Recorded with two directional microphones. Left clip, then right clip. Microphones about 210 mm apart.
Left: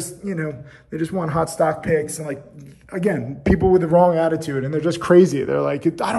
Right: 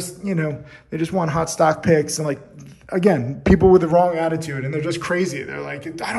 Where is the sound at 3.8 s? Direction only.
Centre (ahead or behind); by 6.1 s 20° left (ahead or behind).